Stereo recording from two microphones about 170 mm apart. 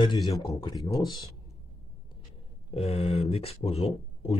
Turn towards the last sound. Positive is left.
turn(degrees=35)  # may be behind; listen again after turning